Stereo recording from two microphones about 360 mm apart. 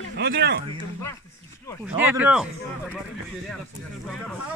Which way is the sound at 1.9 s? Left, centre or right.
Centre.